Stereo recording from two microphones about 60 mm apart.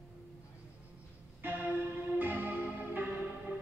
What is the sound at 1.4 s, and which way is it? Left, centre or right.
Music, right.